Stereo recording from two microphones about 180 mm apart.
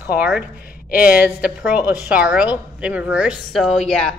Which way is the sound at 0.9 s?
55° left (ahead or behind).